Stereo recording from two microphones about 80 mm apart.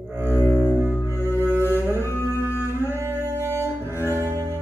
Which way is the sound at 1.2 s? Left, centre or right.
Left.